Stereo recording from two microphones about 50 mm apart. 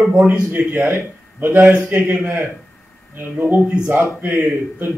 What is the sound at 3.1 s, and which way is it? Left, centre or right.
Speech, right.